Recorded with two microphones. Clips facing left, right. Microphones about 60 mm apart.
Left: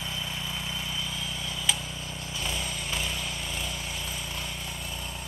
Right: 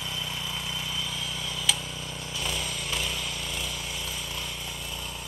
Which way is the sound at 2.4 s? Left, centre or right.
Left.